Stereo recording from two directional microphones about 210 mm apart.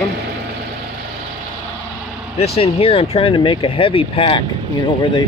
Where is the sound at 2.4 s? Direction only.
30° left (ahead or behind).